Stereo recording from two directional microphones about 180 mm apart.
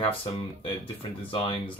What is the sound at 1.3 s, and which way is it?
Speech, 30° left (ahead or behind).